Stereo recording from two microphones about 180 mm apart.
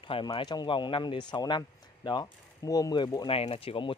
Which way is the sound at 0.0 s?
30° left (ahead or behind).